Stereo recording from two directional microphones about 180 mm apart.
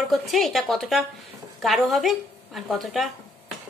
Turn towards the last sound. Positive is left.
turn(degrees=0)  # may be behind; listen again after turning